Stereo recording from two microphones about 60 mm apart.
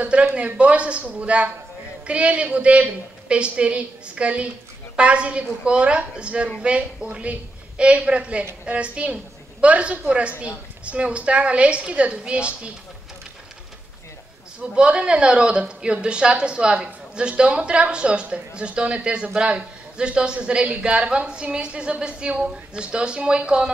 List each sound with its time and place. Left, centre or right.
0.0 s a sound: right
0.6 s a woman's voice: centre
14.6 s a man's voice: centre